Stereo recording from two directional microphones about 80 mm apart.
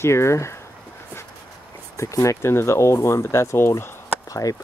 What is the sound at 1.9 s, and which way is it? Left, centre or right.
Speech, left.